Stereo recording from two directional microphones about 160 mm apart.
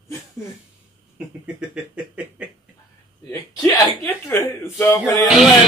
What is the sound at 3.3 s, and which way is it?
Speech, 20° left (ahead or behind).